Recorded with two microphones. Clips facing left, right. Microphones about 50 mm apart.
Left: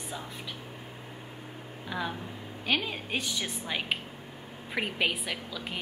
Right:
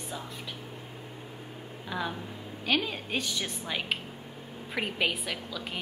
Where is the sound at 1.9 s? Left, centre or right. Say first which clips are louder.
Even; centre.